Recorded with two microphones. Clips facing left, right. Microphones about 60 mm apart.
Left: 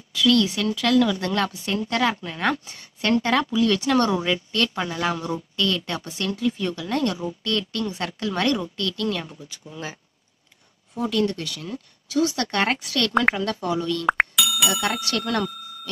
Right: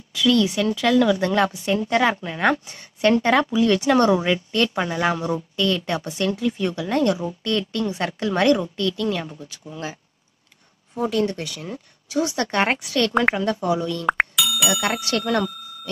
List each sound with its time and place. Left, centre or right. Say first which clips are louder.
0.1 s a woman's voice: right 1 dB; centre
11.0 s speech: right 1 dB; centre
14.0 s speech: even; centre